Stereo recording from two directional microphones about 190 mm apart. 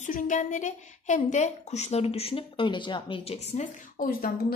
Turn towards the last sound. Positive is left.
turn(degrees=50)  # may be behind; listen again after turning